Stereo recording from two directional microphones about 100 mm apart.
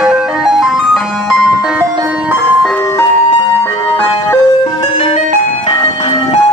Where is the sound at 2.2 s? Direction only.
25° right (ahead or behind).